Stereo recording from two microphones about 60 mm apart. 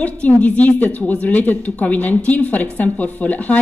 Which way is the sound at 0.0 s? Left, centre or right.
Left.